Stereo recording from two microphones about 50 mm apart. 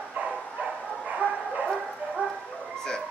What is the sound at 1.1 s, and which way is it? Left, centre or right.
Bow-wow, right.